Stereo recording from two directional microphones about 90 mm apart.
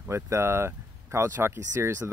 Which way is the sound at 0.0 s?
30° right (ahead or behind).